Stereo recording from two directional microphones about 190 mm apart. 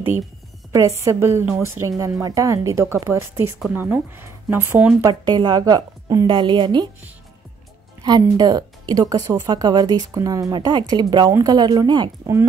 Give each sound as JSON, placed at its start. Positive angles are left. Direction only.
{"t": 0.7, "sound": "speech", "side_deg": -15}
{"t": 5.2, "sound": "speech", "side_deg": -25}
{"t": 8.0, "sound": "speech", "side_deg": -20}